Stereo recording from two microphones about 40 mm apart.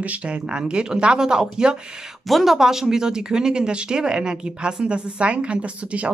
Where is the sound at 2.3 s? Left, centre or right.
Centre.